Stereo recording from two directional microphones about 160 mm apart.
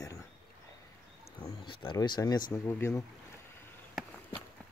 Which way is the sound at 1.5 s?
25° left (ahead or behind).